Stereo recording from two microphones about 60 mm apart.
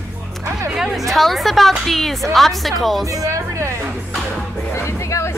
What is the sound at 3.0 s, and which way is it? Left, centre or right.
Music, right.